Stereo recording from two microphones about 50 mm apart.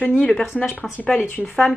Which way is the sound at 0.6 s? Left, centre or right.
Centre.